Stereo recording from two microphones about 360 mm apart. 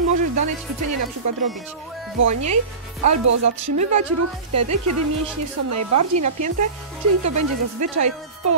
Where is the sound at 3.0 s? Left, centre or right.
Right.